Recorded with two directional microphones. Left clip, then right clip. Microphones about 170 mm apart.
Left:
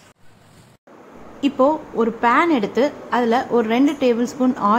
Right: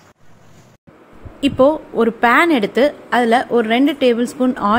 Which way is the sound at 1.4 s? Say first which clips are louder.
Right 4 dB; 20° right (ahead or behind).